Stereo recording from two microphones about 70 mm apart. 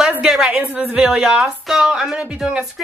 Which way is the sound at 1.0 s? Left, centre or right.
Centre.